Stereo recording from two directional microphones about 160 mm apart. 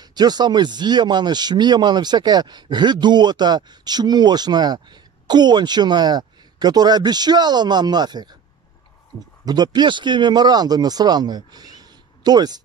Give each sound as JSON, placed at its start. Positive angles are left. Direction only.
{"t": 0.0, "sound": "speech", "side_deg": -25}
{"t": 9.4, "sound": "speech", "side_deg": -25}